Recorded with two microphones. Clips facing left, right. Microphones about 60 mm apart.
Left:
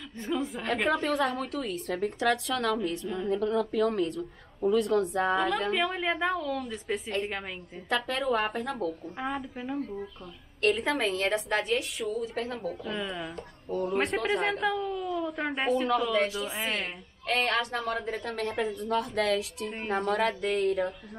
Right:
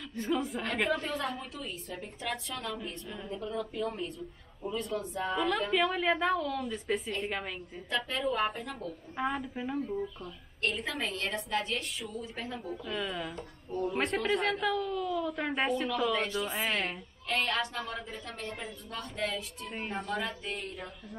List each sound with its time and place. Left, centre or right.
0.2 s a woman's voice: centre
1.0 s a woman's voice: left
5.7 s a woman's voice: centre
7.9 s a woman's voice: left
9.2 s a woman's voice: centre
10.6 s a woman's voice: left
11.2 s a woman's voice: left
12.8 s a woman's voice: centre
13.7 s speech: left
13.9 s a woman's voice: centre
17.3 s a woman's voice: left
19.9 s a woman's voice: left